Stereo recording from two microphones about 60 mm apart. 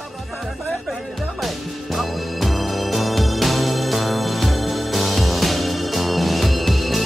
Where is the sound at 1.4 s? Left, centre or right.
Centre.